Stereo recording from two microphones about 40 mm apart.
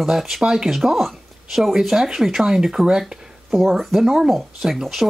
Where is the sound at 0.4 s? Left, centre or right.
Centre.